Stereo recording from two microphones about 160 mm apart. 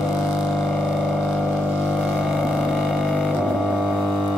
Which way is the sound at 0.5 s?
Centre (ahead or behind).